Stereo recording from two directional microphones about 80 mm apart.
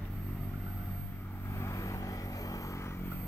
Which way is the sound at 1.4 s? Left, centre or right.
Left.